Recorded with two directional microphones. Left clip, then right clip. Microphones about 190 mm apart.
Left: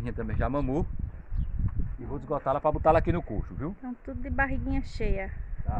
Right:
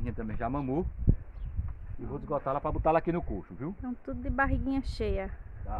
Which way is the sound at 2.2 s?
70° left (ahead or behind).